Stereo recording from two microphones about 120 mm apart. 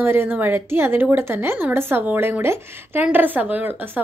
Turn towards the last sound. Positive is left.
turn(degrees=-15)  # may be behind; listen again after turning